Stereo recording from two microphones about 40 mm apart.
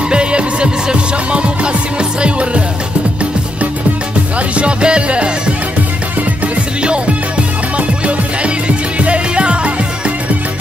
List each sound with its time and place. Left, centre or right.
0.1 s music: right
4.6 s music: right
8.4 s music: right